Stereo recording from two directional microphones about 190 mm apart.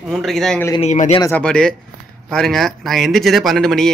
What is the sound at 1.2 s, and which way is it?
A man's voice, 5° left (ahead or behind).